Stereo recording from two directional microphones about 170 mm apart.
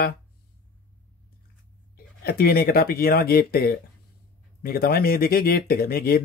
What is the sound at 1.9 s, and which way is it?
Speech, 60° left (ahead or behind).